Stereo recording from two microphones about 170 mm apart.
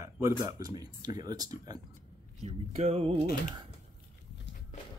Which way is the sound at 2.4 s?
40° right (ahead or behind).